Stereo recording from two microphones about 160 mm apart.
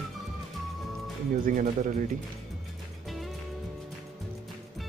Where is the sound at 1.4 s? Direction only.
50° right (ahead or behind).